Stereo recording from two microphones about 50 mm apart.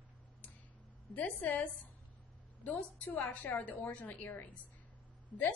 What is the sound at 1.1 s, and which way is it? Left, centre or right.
Speech, left.